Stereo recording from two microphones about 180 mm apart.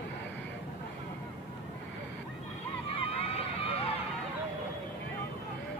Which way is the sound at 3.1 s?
30° left (ahead or behind).